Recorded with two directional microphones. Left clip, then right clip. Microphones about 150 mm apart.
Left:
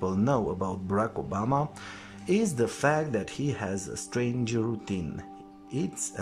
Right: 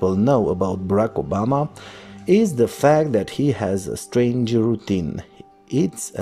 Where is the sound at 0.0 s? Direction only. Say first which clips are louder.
Right 10 dB; 25° right (ahead or behind).